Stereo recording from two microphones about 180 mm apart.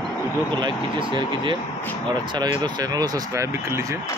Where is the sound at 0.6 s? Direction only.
25° right (ahead or behind).